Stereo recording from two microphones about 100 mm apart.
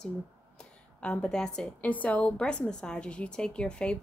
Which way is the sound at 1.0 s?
10° left (ahead or behind).